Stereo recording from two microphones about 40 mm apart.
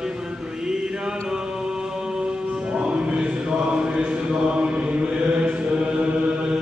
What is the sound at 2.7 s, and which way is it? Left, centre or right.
Music, right.